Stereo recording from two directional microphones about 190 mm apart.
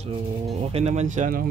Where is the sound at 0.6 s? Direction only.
35° right (ahead or behind).